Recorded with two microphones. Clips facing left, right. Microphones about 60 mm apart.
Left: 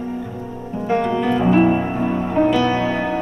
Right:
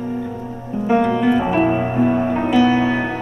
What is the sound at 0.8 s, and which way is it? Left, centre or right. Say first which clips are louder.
Music: right 3 dB; centre.